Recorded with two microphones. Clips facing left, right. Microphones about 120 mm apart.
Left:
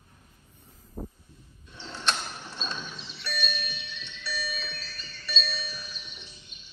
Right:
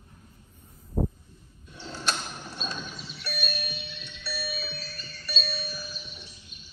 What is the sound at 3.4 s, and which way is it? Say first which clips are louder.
Music: right 1 dB; 55° right (ahead or behind).